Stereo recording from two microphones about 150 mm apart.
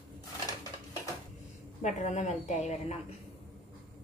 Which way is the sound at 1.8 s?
50° left (ahead or behind).